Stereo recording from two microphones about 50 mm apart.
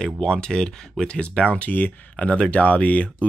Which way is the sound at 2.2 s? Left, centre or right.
Left.